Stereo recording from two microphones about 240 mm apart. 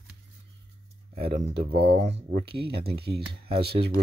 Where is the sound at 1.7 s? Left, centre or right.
Right.